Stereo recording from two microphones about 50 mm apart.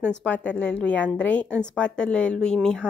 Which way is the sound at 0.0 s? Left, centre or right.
Left.